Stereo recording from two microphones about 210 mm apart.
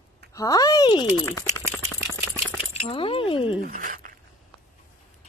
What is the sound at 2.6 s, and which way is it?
Speech, 25° left (ahead or behind).